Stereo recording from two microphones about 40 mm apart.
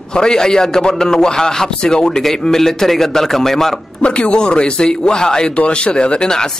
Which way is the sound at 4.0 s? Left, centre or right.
Left.